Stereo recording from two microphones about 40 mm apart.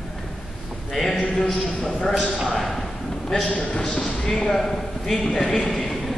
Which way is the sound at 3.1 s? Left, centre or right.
Centre.